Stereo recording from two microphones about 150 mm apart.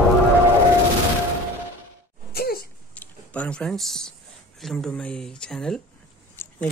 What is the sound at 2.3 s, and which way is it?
Throat clearing, 90° left.